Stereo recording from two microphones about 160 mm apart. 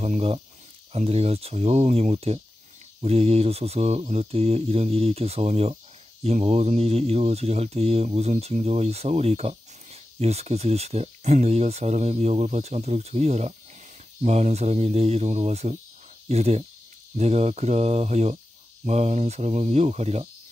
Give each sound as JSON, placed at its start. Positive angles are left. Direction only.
{"t": 0.0, "sound": "speech", "side_deg": -40}